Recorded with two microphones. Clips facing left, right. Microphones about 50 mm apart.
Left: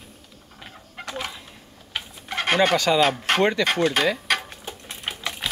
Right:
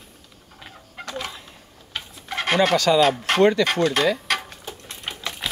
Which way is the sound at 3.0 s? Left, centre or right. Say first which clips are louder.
Right 2 dB; centre.